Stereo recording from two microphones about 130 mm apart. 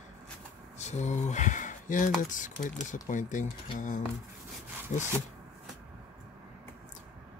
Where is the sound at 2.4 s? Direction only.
90° left; by 5.1 s 70° left (ahead or behind).